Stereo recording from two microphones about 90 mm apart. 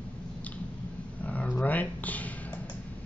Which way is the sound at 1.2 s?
15° left (ahead or behind).